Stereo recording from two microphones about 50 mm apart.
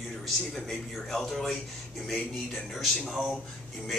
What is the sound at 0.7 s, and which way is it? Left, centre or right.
Speech, centre.